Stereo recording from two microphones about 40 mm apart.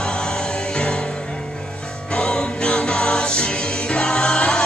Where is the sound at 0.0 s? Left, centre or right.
Left.